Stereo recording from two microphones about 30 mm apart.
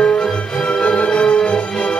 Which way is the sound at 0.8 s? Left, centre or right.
Left.